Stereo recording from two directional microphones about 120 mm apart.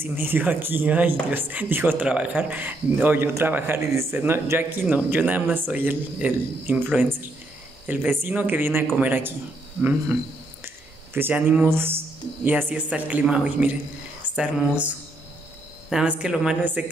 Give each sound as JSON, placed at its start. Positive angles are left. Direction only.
{"t": 0.0, "sound": "speech", "side_deg": -15}
{"t": 11.1, "sound": "speech", "side_deg": -15}